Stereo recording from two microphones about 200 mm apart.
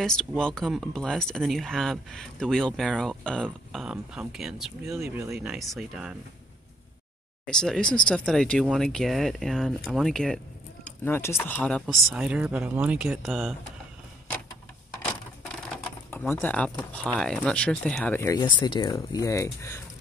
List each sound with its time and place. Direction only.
0.0 s speech: 5° left (ahead or behind)
7.4 s speech: 5° left (ahead or behind)
15.7 s speech: 5° left (ahead or behind)
18.4 s speech: 25° left (ahead or behind)